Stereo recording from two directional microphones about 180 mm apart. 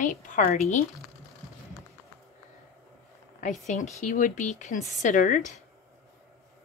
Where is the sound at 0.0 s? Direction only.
50° left (ahead or behind).